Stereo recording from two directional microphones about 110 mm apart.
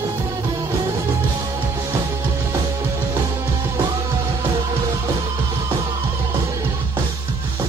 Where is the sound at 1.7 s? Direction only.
25° right (ahead or behind).